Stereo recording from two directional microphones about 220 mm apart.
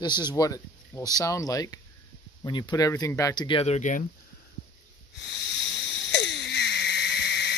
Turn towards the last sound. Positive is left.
turn(degrees=50)  # may be behind; listen again after turning